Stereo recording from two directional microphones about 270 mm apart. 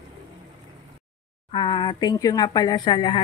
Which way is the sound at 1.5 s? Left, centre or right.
Centre.